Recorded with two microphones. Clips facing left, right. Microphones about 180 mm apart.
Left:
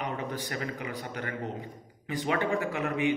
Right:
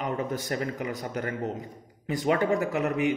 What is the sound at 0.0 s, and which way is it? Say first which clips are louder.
A man's voice: right 4 dB; 45° right (ahead or behind).